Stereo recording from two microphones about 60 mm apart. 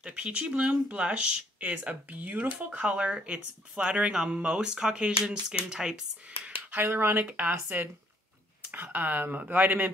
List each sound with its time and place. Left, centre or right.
0.0 s speech: right
6.7 s speech: right
7.2 s speech: right
8.9 s speech: right